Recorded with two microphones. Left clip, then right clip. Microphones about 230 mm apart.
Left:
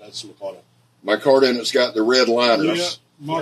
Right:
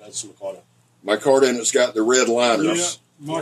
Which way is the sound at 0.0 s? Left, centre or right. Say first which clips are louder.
Even; centre.